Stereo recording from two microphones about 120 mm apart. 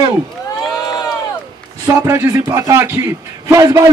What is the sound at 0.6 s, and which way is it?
Crowd, 5° right (ahead or behind).